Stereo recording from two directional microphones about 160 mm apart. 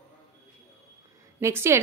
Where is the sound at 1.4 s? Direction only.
15° right (ahead or behind).